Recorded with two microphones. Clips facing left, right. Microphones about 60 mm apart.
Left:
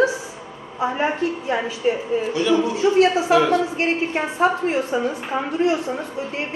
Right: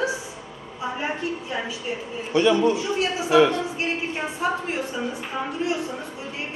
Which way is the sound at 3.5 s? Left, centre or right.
Left.